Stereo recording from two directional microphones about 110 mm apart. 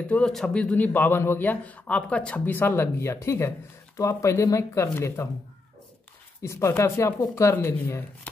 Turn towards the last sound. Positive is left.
turn(degrees=25)  # may be behind; listen again after turning